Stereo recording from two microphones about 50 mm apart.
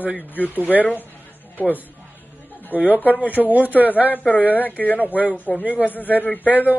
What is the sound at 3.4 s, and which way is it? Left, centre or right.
Speech, left.